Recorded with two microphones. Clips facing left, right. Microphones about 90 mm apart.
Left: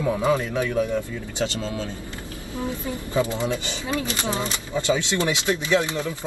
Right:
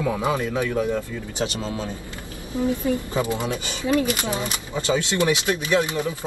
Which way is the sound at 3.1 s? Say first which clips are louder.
Left 1 dB; 20° right (ahead or behind).